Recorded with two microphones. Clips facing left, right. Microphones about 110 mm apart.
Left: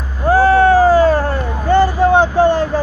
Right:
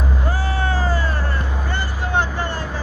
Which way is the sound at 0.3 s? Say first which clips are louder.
Left 17 dB; 50° left (ahead or behind).